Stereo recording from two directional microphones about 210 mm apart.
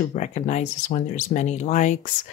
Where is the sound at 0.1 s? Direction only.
35° left (ahead or behind).